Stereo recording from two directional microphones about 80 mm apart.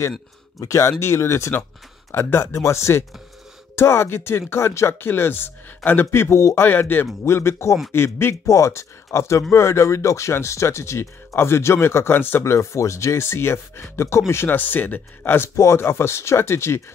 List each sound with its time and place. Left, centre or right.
0.6 s a man's voice: left